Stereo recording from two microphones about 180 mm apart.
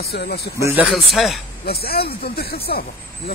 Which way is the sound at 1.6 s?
60° left (ahead or behind).